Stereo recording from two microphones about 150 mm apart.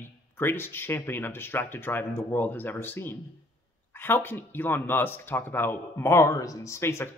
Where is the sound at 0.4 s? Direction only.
15° left (ahead or behind).